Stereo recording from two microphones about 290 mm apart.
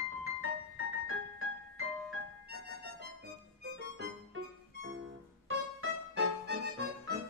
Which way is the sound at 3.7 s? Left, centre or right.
Right.